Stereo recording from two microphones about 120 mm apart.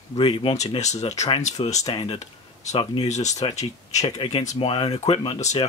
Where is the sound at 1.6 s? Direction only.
45° left (ahead or behind).